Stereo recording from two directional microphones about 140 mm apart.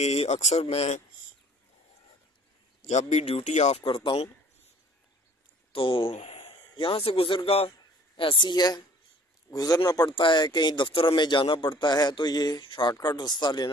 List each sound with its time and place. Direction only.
0.0 s speech: 50° left (ahead or behind)
2.8 s speech: 55° left (ahead or behind)
3.8 s a man's voice: 35° left (ahead or behind)
5.7 s a man's voice: 40° left (ahead or behind)